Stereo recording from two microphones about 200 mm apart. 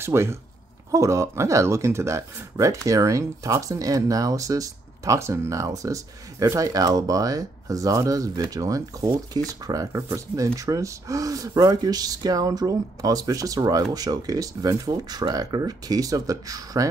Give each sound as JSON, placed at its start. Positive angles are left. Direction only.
{"t": 0.0, "sound": "speech", "side_deg": -15}